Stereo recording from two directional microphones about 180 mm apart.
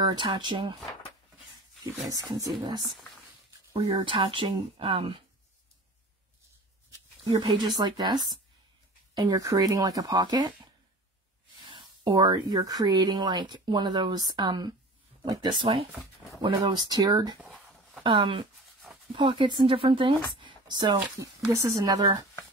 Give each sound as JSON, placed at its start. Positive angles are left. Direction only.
{"t": 0.0, "sound": "speech", "side_deg": -25}
{"t": 2.0, "sound": "speech", "side_deg": -20}
{"t": 7.2, "sound": "speech", "side_deg": -25}